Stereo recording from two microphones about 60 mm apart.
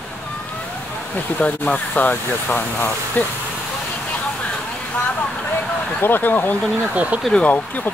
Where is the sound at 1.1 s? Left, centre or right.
Left.